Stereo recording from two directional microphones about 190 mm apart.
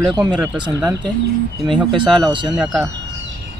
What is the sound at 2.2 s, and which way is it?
Speech, 25° right (ahead or behind).